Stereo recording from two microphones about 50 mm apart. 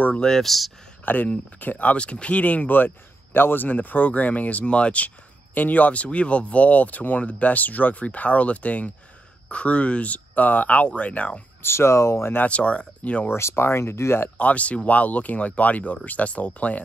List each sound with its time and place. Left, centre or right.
0.2 s speech: centre
1.0 s speech: left
11.6 s speech: left
12.4 s speech: left
13.4 s speech: left
14.4 s speech: left